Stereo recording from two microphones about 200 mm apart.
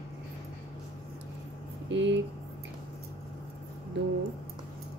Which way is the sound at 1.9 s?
65° right (ahead or behind).